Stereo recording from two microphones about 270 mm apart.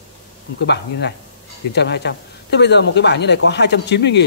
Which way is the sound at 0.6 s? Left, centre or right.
Left.